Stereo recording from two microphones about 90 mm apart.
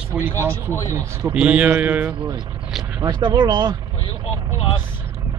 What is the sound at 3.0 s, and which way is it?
Speech, 55° right (ahead or behind).